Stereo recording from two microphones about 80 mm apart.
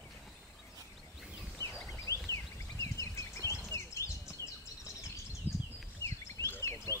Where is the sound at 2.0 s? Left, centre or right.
Left.